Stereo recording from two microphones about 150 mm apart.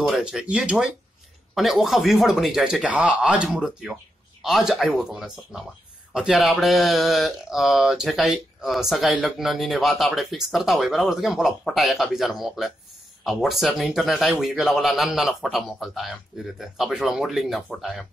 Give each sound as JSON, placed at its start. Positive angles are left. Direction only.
{"t": 0.0, "sound": "speech", "side_deg": -5}